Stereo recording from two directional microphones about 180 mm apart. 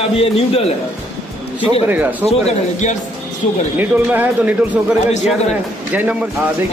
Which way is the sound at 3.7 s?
10° right (ahead or behind).